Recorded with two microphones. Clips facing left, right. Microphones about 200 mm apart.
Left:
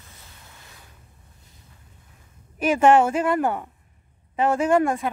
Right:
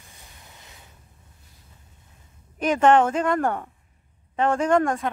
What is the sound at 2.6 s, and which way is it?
A woman's voice, 10° left (ahead or behind).